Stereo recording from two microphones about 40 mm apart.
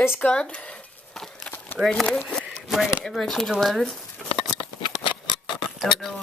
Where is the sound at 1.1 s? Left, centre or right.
Centre.